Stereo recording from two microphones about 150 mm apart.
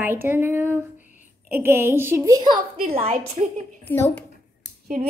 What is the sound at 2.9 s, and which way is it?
Speech, 50° right (ahead or behind).